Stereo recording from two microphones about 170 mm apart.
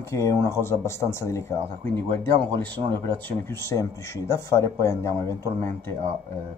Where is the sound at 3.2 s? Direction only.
15° left (ahead or behind).